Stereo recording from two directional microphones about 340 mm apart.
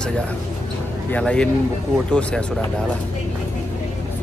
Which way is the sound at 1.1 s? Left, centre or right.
Centre.